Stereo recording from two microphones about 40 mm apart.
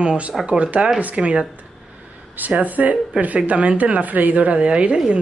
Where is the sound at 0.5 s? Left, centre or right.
Right.